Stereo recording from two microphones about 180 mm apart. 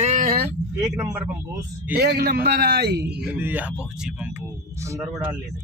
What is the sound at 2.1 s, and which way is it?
Speech, 60° right (ahead or behind).